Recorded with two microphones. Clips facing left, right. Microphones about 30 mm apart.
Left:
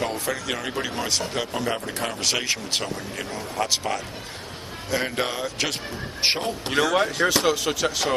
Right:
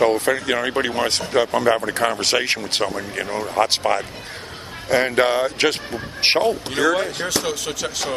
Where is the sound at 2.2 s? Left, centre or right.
Right.